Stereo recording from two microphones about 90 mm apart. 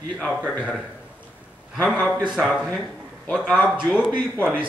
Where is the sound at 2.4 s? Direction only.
5° left (ahead or behind).